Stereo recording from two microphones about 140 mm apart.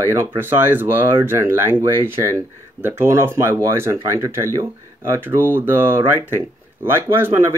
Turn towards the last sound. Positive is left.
turn(degrees=-15)  # may be behind; listen again after turning